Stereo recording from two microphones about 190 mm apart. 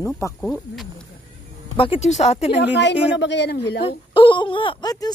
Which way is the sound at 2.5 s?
65° left (ahead or behind).